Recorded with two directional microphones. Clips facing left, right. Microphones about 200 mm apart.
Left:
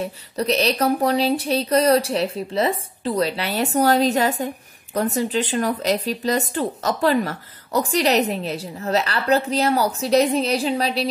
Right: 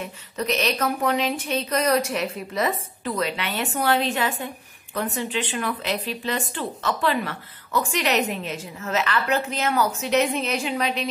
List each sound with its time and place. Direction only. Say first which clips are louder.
0.0 s speech: left 5 dB; 35° left (ahead or behind)